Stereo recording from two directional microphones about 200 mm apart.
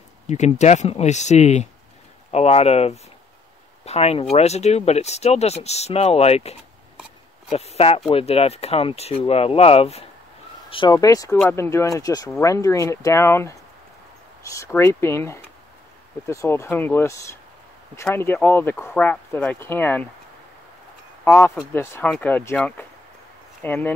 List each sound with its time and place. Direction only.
0.3 s speech: 35° left (ahead or behind)
7.5 s speech: 30° left (ahead or behind); by 20.1 s 10° left (ahead or behind)
21.2 s speech: 10° left (ahead or behind)